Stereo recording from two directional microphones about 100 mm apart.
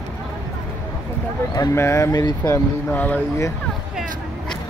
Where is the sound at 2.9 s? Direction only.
20° left (ahead or behind).